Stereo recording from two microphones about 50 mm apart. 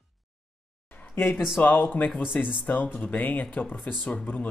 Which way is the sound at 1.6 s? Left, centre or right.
Left.